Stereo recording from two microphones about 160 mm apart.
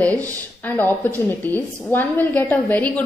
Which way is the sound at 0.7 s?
10° left (ahead or behind).